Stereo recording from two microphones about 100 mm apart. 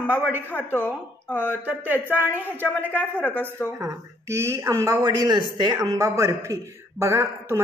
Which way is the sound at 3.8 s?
30° right (ahead or behind).